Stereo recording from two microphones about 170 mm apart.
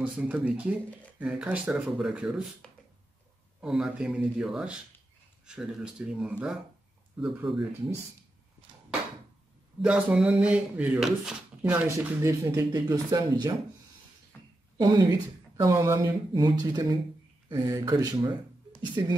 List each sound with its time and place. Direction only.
0.0 s speech: 10° right (ahead or behind)
3.6 s speech: 5° right (ahead or behind)
9.8 s speech: 5° right (ahead or behind); by 13.6 s 20° right (ahead or behind)
14.3 s a sound: 10° left (ahead or behind)
14.8 s speech: 25° right (ahead or behind)